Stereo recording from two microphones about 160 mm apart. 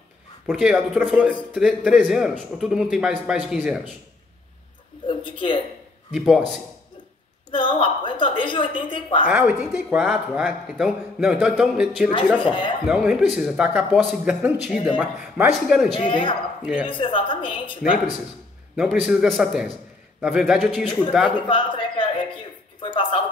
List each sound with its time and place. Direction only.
0.5 s speech: 5° right (ahead or behind)
5.0 s a sound: 30° left (ahead or behind)
6.1 s speech: 5° right (ahead or behind)
7.5 s a woman's voice: 30° left (ahead or behind)
9.3 s speech: 5° right (ahead or behind)
12.4 s a woman's voice: 30° left (ahead or behind)
12.8 s speech: 5° right (ahead or behind)
16.0 s a woman's voice: 30° left (ahead or behind)
16.6 s speech: 5° right (ahead or behind)
16.9 s a woman's voice: 30° left (ahead or behind)
18.8 s speech: 5° right (ahead or behind)
21.4 s a sound: 30° left (ahead or behind)